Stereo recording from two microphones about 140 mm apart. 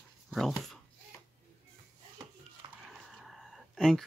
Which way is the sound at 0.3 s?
Centre (ahead or behind).